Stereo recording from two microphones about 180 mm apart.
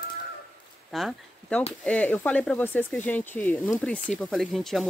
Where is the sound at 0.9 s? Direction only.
5° left (ahead or behind).